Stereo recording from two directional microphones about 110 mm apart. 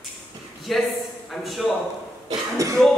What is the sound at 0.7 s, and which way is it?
Speech, centre (ahead or behind).